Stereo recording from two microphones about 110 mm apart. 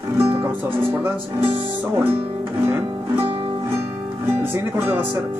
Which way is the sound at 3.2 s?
60° right (ahead or behind).